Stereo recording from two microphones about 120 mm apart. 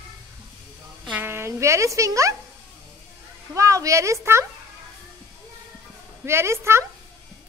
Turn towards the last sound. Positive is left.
turn(degrees=-25)  # may be behind; listen again after turning